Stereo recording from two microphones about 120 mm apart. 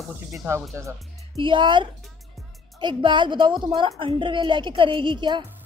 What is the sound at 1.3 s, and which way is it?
A woman's voice, 45° right (ahead or behind).